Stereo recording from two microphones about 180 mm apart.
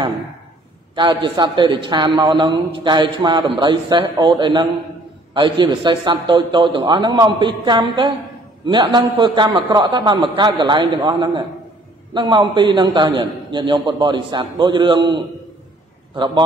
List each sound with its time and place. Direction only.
0.9 s a man's voice: 25° right (ahead or behind)